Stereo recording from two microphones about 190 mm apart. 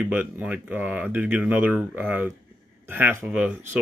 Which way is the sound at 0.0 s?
5° right (ahead or behind).